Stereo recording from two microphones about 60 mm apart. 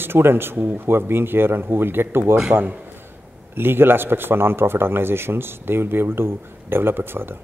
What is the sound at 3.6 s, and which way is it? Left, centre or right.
Speech, right.